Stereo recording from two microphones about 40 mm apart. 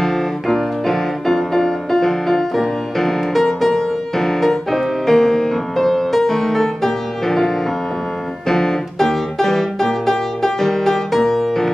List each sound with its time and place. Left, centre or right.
0.0 s music: centre